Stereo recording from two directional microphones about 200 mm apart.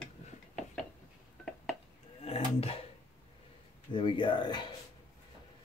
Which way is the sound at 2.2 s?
30° left (ahead or behind).